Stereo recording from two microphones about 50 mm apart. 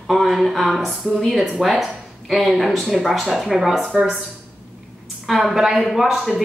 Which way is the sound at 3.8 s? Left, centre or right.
Centre.